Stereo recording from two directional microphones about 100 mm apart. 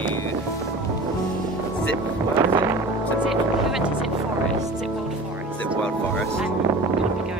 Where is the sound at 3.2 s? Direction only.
5° right (ahead or behind).